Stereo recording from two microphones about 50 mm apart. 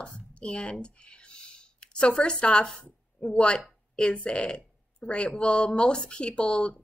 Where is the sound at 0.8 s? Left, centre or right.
Centre.